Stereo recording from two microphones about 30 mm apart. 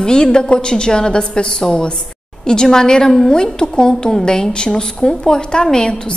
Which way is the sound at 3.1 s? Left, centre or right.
Centre.